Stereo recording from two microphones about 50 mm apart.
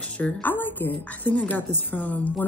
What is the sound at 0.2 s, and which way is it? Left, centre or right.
A woman's voice, left.